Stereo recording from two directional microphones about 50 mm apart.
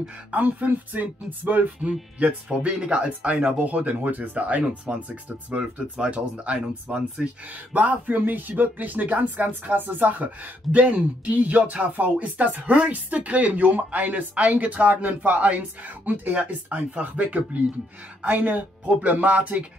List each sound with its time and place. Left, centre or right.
0.3 s speech: right
2.1 s speech: right
7.7 s speech: right